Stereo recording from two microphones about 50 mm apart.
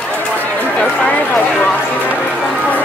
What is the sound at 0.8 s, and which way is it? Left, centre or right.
Speech, left.